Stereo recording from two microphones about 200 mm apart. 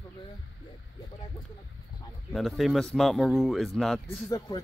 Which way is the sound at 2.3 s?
Centre (ahead or behind).